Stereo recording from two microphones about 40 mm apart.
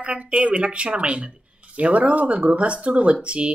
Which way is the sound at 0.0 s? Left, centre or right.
Right.